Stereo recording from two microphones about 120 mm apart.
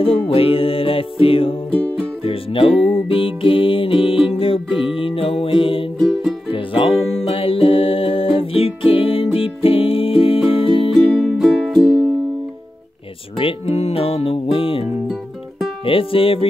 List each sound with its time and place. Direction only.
0.3 s music: 50° left (ahead or behind)
5.9 s music: centre (ahead or behind)
6.5 s music: 50° left (ahead or behind)
10.9 s music: centre (ahead or behind)
13.4 s music: 55° left (ahead or behind)